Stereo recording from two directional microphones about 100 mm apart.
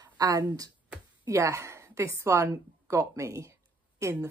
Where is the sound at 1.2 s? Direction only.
30° right (ahead or behind).